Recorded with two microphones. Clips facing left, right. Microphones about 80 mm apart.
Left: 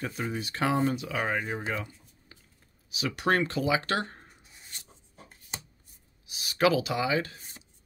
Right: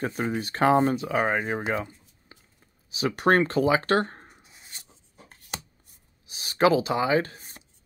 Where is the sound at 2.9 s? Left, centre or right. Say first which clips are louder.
Right 5 dB; right.